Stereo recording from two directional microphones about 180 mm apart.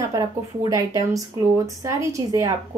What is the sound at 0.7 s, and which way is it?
Speech, 20° right (ahead or behind).